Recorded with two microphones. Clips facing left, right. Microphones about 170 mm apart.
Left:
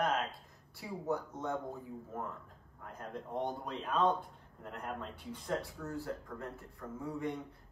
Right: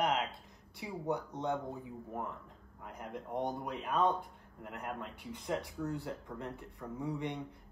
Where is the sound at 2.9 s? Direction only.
15° right (ahead or behind).